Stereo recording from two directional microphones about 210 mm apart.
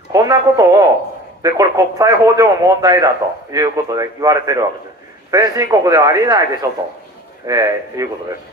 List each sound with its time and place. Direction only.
0.1 s a man's voice: 15° right (ahead or behind)
7.4 s a man's voice: 15° right (ahead or behind)